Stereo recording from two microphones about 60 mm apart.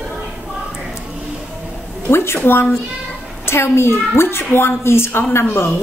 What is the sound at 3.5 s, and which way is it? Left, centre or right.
A woman's voice, left.